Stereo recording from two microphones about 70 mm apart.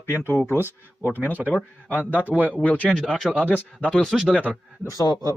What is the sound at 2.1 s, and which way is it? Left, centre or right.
Speech, right.